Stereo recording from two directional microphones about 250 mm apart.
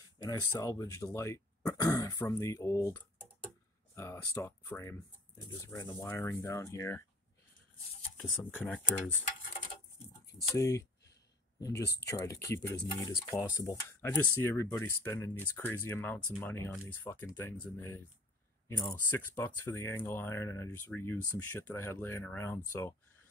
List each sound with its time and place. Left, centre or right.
0.2 s speech: centre
8.2 s speech: centre
10.4 s speech: centre
11.7 s speech: left
12.1 s speech: centre